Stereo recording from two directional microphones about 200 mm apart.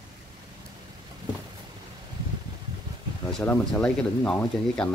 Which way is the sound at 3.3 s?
5° left (ahead or behind).